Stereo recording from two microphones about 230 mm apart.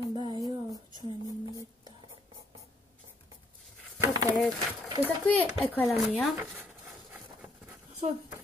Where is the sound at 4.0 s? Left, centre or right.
Centre.